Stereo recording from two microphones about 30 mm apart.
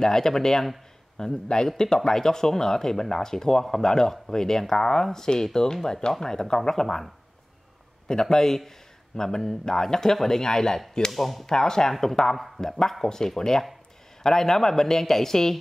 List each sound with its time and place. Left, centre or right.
0.0 s speech: centre
8.1 s a man's voice: centre
11.1 s speech: centre
11.4 s speech: left